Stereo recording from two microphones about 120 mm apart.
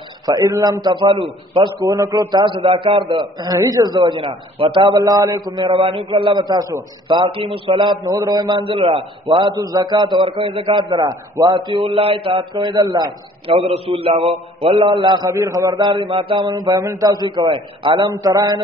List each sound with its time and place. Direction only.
0.3 s a man's voice: 30° right (ahead or behind)
4.0 s a man's voice: 45° right (ahead or behind)
4.9 s a man's voice: 30° right (ahead or behind); by 7.8 s 50° right (ahead or behind)
8.1 s a man's voice: 30° right (ahead or behind)
11.5 s a man's voice: 45° right (ahead or behind)
13.5 s a man's voice: 55° right (ahead or behind); by 18.6 s 30° right (ahead or behind)